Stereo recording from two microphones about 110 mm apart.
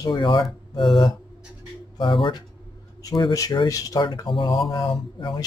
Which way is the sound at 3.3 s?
30° left (ahead or behind).